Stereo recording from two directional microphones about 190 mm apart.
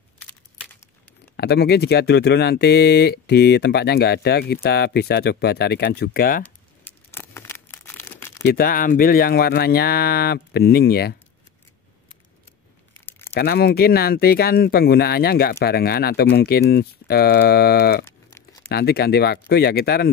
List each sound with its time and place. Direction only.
1.3 s speech: 55° left (ahead or behind)
6.4 s crumpling: 10° left (ahead or behind)
8.4 s speech: 50° left (ahead or behind)
13.3 s speech: 55° left (ahead or behind)